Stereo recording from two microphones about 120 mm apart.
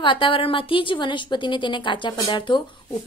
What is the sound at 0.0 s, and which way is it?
Speech, 45° left (ahead or behind).